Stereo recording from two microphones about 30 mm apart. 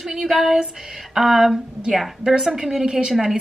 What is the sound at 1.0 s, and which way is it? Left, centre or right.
Speech, centre.